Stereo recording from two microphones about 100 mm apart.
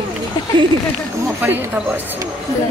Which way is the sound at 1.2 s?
20° right (ahead or behind).